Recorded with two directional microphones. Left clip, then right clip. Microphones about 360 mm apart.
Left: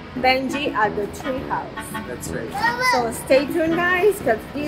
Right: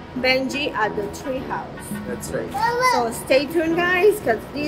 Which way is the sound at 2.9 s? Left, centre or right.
Centre.